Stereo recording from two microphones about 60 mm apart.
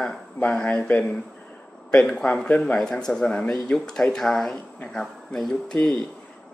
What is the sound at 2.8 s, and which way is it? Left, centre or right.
Speech, centre.